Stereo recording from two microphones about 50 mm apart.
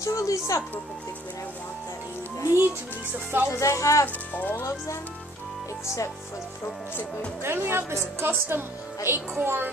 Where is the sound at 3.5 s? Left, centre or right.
Left.